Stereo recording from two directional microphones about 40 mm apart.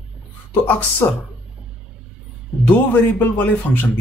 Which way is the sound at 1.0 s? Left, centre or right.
Left.